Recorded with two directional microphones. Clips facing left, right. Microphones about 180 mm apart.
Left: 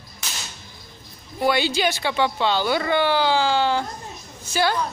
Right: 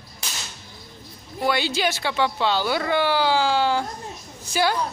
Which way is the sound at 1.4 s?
Centre (ahead or behind).